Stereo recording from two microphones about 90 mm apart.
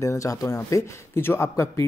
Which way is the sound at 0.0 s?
35° left (ahead or behind).